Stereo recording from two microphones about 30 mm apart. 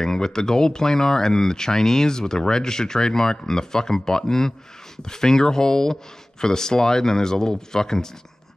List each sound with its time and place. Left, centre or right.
0.0 s speech: centre